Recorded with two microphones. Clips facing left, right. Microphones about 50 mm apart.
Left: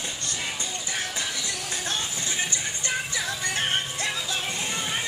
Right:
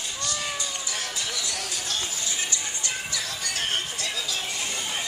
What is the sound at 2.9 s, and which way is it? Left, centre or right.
Music, left.